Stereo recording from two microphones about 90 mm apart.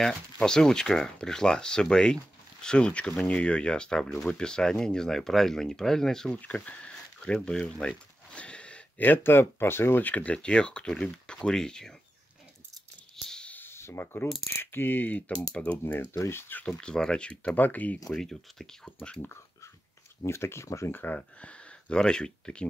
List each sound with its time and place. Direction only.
0.0 s speech: 5° left (ahead or behind)
13.1 s a sound: 10° left (ahead or behind)
13.6 s a sound: 30° left (ahead or behind)
14.4 s speech: 25° left (ahead or behind)
16.6 s speech: 10° left (ahead or behind)
18.1 s speech: 5° left (ahead or behind)
20.2 s speech: 30° left (ahead or behind)
20.9 s speech: 20° left (ahead or behind)